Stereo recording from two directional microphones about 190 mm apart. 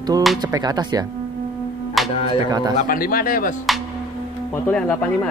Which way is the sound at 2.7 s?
50° left (ahead or behind).